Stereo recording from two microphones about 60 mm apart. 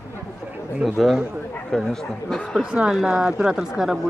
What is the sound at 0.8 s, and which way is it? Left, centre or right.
Speech, centre.